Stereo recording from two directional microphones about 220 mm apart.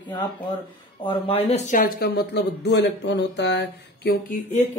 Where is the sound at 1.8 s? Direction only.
45° left (ahead or behind).